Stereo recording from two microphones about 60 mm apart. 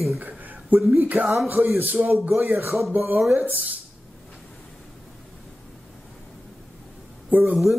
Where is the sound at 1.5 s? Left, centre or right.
Right.